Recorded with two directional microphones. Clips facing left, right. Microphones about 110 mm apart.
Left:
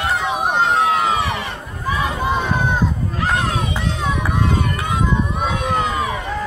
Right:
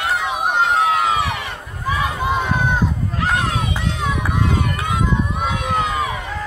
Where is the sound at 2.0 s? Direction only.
10° right (ahead or behind).